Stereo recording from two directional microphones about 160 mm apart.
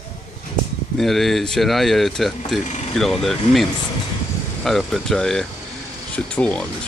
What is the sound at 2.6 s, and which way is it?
Speech, 45° left (ahead or behind).